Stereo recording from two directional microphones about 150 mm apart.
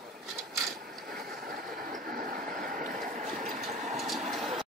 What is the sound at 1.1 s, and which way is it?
Vehicle, 75° right (ahead or behind).